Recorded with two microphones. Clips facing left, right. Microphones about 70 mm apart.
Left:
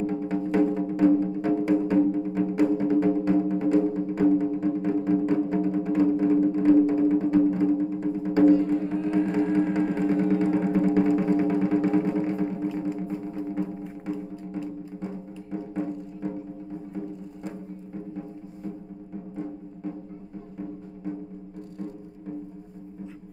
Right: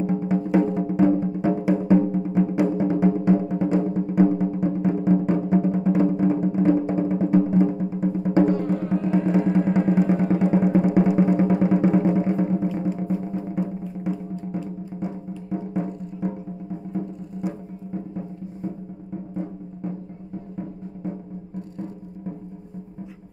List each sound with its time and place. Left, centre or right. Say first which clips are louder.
0.0 s music: right 3 dB; centre
8.5 s music: left 4 dB; right
8.8 s music: right 2 dB; centre